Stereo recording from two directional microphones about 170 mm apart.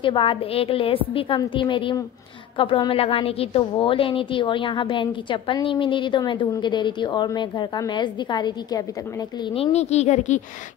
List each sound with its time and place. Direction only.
0.0 s a woman's voice: 30° left (ahead or behind)